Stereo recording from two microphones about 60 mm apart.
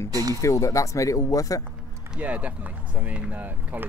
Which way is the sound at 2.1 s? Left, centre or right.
Right.